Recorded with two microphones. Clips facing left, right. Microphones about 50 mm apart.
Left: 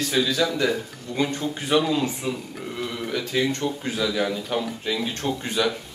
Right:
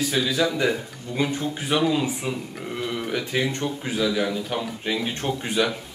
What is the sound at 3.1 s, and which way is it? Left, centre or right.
Speech, centre.